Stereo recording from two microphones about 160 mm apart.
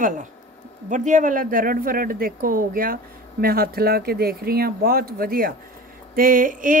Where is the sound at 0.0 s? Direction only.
50° right (ahead or behind).